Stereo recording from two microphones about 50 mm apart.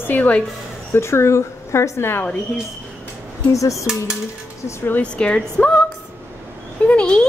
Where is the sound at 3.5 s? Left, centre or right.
Left.